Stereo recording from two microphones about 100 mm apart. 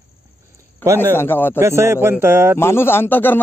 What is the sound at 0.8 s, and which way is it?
Speech, 25° right (ahead or behind).